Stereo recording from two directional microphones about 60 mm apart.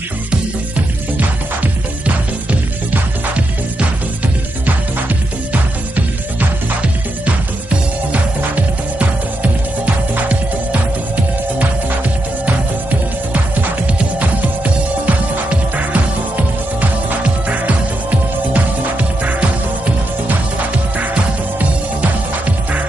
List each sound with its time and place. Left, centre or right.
0.3 s music: right
4.6 s music: right
9.4 s music: right
14.2 s music: right
21.0 s music: right